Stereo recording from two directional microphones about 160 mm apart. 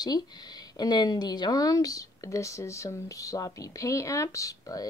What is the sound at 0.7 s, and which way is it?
Speech, 25° left (ahead or behind).